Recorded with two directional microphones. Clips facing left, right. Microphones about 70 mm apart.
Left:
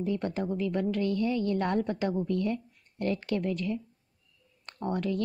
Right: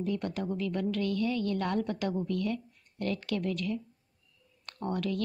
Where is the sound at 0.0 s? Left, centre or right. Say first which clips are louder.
Left 2 dB; left.